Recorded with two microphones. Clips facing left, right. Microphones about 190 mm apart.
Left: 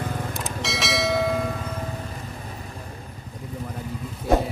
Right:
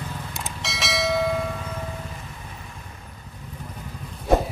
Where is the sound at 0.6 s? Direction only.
Centre (ahead or behind).